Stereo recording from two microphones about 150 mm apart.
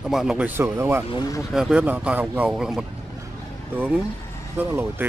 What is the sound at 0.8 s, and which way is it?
Speech, 15° right (ahead or behind).